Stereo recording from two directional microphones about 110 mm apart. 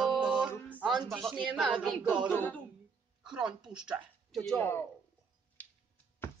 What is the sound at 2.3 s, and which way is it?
Speech, 15° left (ahead or behind).